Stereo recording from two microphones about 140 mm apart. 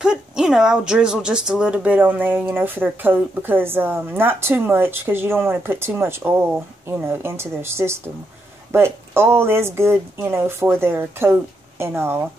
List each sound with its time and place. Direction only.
0.0 s speech: 5° right (ahead or behind)